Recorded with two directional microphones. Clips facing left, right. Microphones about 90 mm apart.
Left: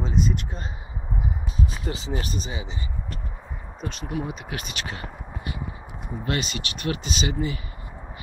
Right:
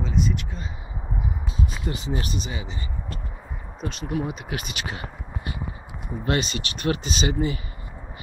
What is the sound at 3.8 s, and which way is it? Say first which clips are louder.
Speech: right 2 dB; centre (ahead or behind).